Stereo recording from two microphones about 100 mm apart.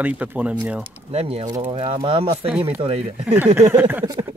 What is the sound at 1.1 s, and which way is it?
Speech, 90° right.